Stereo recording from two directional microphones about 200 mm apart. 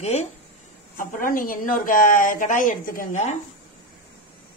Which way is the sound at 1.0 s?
45° left (ahead or behind).